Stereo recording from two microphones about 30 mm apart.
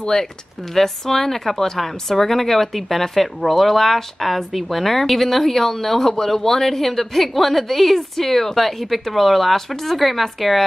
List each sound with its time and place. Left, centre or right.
0.0 s a woman's voice: centre